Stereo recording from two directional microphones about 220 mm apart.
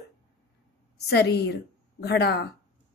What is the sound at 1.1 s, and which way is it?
A woman's voice, 50° left (ahead or behind).